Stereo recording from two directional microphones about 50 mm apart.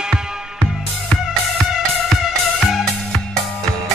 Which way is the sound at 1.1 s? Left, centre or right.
Left.